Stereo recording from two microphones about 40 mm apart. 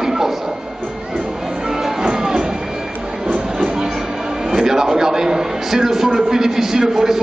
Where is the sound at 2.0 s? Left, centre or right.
Centre.